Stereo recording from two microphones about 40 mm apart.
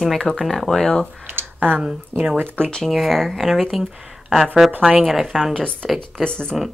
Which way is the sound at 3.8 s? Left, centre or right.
Centre.